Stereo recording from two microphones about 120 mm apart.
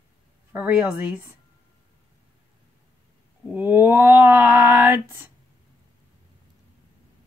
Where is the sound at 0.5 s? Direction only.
10° right (ahead or behind).